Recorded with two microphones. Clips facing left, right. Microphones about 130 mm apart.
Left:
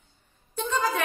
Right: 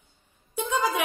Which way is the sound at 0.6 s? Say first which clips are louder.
Right 1 dB; 15° right (ahead or behind).